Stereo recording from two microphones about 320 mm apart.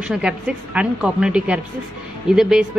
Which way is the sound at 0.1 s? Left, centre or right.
Centre.